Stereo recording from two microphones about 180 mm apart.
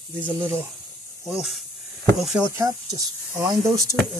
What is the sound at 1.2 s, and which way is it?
Speech, centre (ahead or behind).